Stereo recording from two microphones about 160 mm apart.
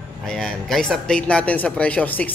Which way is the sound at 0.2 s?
5° left (ahead or behind).